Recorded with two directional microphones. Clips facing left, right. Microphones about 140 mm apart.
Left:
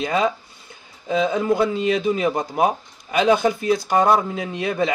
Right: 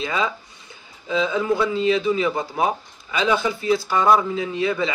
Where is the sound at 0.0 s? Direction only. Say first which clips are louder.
Left 4 dB; 50° left (ahead or behind).